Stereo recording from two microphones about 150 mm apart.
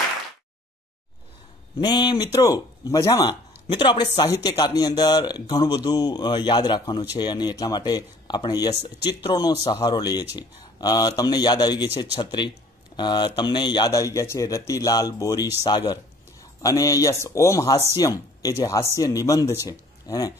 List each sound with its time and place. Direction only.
1.8 s speech: 30° left (ahead or behind)